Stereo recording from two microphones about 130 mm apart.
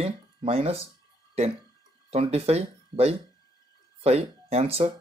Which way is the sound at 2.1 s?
55° right (ahead or behind).